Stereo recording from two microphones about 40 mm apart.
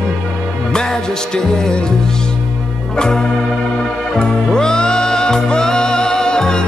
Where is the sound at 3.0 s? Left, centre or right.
Centre.